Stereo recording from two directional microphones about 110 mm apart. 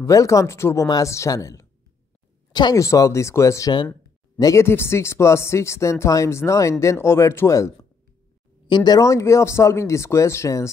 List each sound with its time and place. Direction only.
0.0 s speech: 30° left (ahead or behind)
8.6 s speech: 40° left (ahead or behind)